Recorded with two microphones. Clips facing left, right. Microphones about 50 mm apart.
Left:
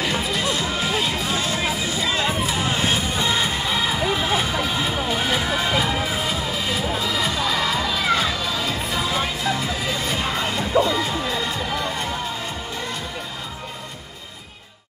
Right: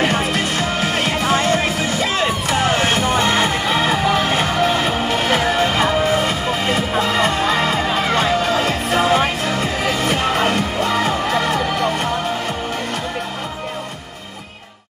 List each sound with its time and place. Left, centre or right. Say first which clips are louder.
0.0 s music: right 5 dB; right
2.4 s music: right 5 dB; right